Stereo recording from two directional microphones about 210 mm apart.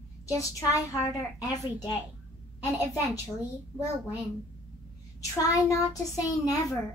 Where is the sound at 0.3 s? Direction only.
15° left (ahead or behind).